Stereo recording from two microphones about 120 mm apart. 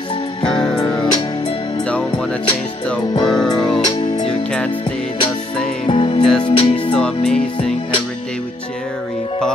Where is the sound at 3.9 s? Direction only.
35° left (ahead or behind).